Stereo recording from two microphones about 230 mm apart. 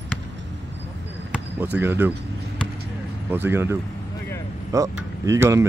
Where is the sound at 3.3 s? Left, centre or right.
Centre.